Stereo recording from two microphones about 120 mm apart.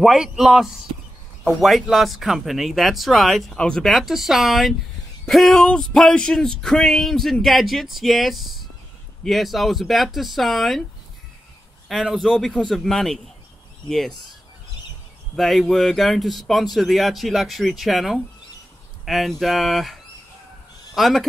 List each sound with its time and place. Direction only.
0.0 s speech: centre (ahead or behind)
11.9 s speech: 5° right (ahead or behind)
15.3 s speech: centre (ahead or behind)